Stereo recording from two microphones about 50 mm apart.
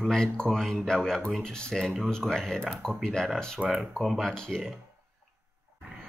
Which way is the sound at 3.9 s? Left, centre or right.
Centre.